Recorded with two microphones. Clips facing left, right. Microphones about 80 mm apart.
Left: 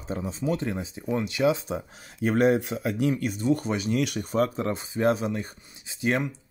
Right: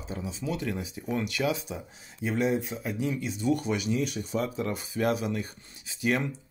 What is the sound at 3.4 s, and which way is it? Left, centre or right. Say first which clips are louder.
Speech: even; left.